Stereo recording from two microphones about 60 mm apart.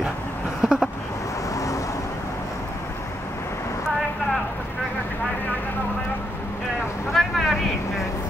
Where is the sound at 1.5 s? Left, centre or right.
Left.